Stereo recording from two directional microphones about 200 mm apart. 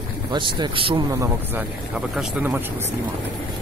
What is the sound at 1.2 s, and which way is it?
Speech, 10° right (ahead or behind).